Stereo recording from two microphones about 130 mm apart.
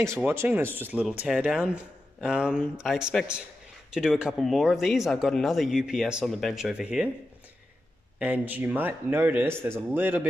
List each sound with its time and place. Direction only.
0.3 s speech: 20° right (ahead or behind)
8.2 s speech: 10° right (ahead or behind)